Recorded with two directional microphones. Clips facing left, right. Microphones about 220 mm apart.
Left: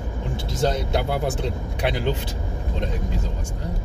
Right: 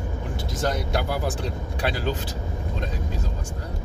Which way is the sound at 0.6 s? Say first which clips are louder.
Left 3 dB; 25° left (ahead or behind).